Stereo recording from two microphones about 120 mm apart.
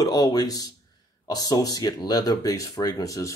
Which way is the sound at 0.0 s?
30° left (ahead or behind).